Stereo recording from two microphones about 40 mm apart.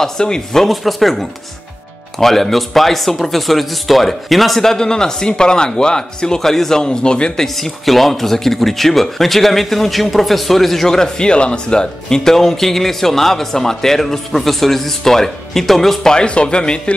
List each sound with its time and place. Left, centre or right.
0.0 s speech: centre
0.6 s speech: centre; by 7.4 s left
7.4 s speech: centre; by 12.2 s left
12.2 s speech: centre
16.1 s speech: left